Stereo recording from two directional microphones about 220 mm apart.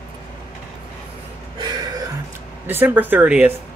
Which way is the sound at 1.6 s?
15° right (ahead or behind).